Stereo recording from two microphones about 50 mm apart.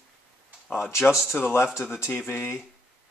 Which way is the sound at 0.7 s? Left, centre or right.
Left.